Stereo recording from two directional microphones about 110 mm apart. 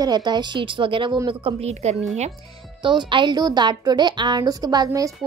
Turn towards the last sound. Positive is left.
turn(degrees=-30)  # may be behind; listen again after turning